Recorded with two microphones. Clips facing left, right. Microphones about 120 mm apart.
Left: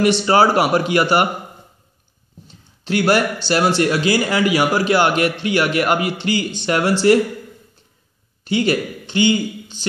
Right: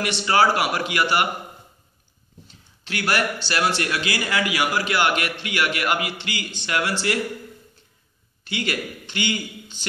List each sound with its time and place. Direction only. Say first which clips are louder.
0.2 s a man's voice: left 5 dB; 35° left (ahead or behind)
2.9 s a man's voice: left 8 dB; 30° left (ahead or behind)
8.5 s speech: left 9 dB; 30° left (ahead or behind)